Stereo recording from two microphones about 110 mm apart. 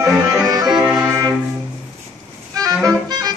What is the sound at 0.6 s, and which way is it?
Music, 5° right (ahead or behind).